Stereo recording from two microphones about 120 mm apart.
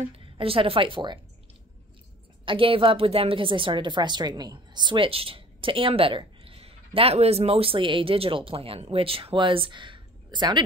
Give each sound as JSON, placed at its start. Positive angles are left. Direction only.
{"t": 0.1, "sound": "a woman's voice", "side_deg": -50}
{"t": 2.4, "sound": "a woman's voice", "side_deg": -45}